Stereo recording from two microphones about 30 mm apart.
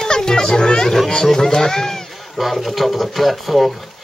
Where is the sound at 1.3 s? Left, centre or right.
Centre.